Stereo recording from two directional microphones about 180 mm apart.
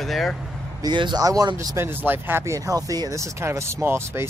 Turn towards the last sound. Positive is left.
turn(degrees=-15)  # may be behind; listen again after turning